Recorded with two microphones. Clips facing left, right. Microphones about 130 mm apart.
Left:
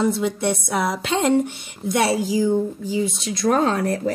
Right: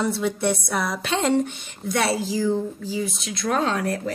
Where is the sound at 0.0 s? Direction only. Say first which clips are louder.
Left 2 dB; 15° left (ahead or behind).